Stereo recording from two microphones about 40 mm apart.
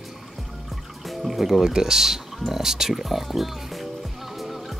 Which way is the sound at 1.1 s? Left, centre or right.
Centre.